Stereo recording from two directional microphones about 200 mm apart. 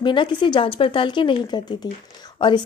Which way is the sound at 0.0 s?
25° left (ahead or behind).